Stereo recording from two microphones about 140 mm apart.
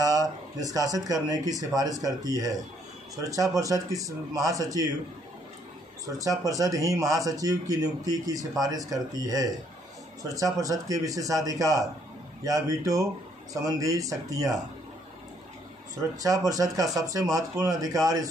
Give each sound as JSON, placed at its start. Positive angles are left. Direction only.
{"t": 0.6, "sound": "speech", "side_deg": -25}
{"t": 6.0, "sound": "speech", "side_deg": -25}
{"t": 16.0, "sound": "speech", "side_deg": -25}